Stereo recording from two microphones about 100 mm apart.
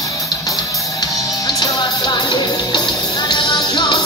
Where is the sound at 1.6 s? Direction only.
45° left (ahead or behind).